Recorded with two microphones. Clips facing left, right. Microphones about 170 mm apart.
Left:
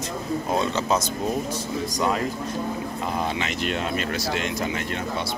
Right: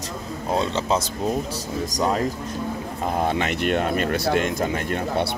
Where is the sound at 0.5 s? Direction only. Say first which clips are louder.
Right 2 dB; 30° right (ahead or behind).